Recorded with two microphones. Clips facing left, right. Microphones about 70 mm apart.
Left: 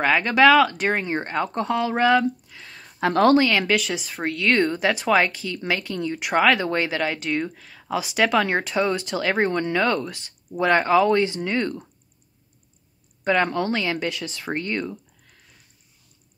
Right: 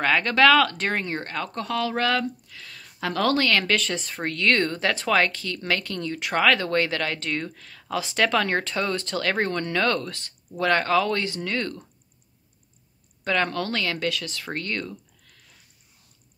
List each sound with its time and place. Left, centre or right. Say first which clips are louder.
0.0 s speech: left 2 dB; centre; by 3.3 s left
3.3 s speech: left 3 dB; centre
13.2 s speech: left 4 dB; centre